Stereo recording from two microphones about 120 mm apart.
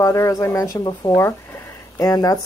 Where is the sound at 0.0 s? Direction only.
30° left (ahead or behind).